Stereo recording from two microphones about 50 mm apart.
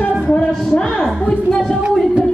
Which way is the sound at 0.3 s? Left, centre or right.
Left.